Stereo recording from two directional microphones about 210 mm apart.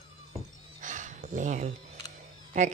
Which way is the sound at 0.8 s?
35° right (ahead or behind).